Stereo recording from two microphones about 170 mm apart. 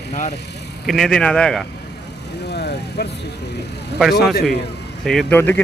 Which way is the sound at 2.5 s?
75° left (ahead or behind).